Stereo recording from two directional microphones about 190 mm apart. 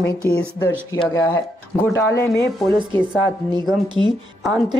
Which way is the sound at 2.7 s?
20° right (ahead or behind).